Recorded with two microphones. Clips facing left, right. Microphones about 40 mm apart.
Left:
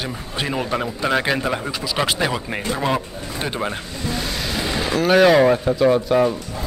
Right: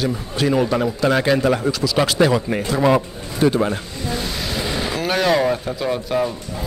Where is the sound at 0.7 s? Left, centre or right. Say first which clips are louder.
Right 3 dB; centre.